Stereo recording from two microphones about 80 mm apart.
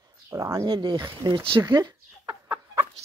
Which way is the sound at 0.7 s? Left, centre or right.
Right.